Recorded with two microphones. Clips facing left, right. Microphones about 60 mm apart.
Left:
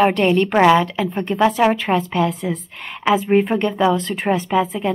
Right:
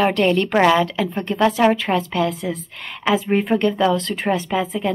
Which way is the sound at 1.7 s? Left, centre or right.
Centre.